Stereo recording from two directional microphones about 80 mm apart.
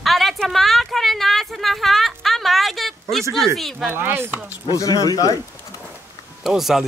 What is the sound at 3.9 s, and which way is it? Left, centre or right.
Speech, right.